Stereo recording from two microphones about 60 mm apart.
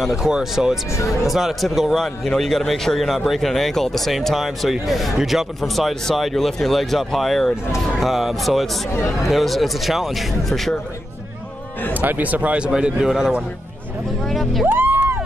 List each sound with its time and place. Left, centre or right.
0.0 s speech: centre
8.9 s speech: left
9.3 s speech: centre
11.9 s speech: right; by 13.3 s centre
14.3 s speech: centre
14.7 s music: right